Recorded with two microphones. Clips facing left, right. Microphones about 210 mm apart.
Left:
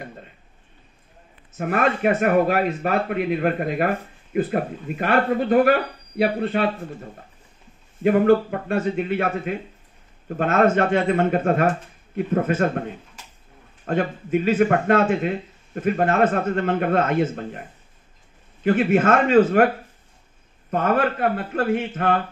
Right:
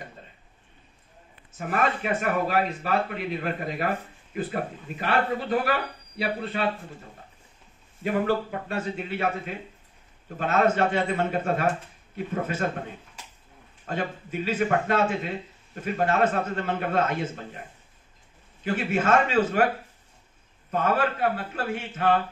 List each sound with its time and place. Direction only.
1.7 s a man's voice: 60° left (ahead or behind)
8.0 s a man's voice: 55° left (ahead or behind)
13.8 s a man's voice: 55° left (ahead or behind)
18.6 s a man's voice: 55° left (ahead or behind)
20.7 s a man's voice: 55° left (ahead or behind)